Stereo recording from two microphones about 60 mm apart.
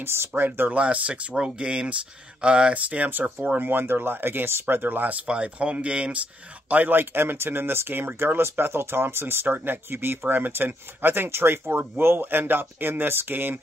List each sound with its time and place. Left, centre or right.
0.0 s speech: right
0.7 s speech: right
6.7 s speech: right